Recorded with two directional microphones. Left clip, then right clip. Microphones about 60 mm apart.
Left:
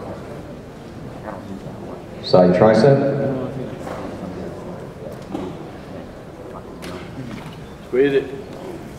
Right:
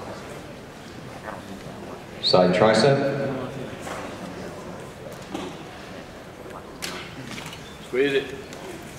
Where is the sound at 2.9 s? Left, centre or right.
Right.